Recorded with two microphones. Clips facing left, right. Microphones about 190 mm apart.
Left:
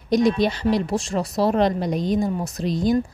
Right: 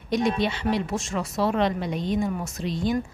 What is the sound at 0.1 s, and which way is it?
A woman's voice, 40° left (ahead or behind).